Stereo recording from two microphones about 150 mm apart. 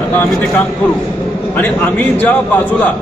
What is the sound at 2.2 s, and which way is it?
Speech, 10° left (ahead or behind).